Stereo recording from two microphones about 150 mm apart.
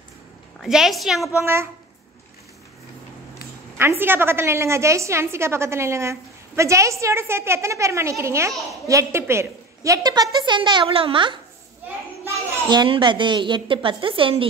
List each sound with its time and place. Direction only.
0.6 s a woman's voice: centre (ahead or behind)
1.4 s speech: 15° right (ahead or behind)
3.7 s a woman's voice: 15° right (ahead or behind); by 11.3 s 35° right (ahead or behind)
12.6 s a woman's voice: 30° right (ahead or behind)